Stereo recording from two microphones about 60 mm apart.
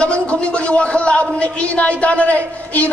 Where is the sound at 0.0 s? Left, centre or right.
Centre.